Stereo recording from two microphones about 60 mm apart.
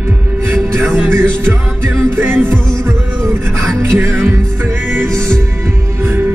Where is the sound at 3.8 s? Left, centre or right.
Right.